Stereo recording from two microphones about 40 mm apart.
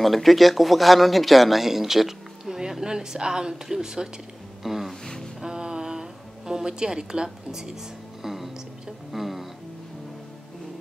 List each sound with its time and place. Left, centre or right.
0.0 s speech: centre
5.0 s music: centre
5.4 s music: centre